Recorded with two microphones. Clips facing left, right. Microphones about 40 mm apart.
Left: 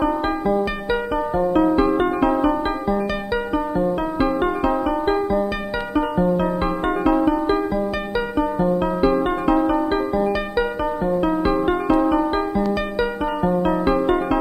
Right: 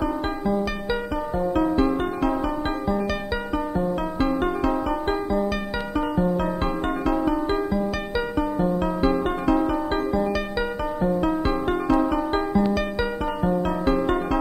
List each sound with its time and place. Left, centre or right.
0.0 s music: left
3.7 s music: centre